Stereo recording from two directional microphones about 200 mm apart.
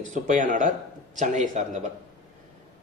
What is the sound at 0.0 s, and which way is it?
A man's voice, 40° right (ahead or behind).